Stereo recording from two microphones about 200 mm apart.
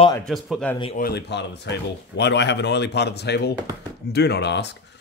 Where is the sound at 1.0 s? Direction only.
55° left (ahead or behind).